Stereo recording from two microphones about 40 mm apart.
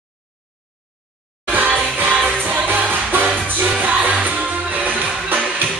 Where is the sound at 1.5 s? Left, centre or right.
Right.